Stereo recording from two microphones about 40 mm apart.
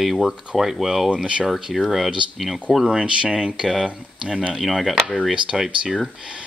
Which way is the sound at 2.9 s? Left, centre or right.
Right.